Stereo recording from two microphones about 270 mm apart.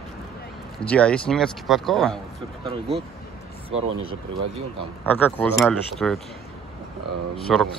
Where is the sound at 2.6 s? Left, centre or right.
Right.